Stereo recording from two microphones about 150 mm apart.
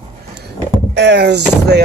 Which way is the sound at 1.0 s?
90° right.